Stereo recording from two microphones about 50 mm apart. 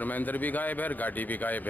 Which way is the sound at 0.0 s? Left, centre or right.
Left.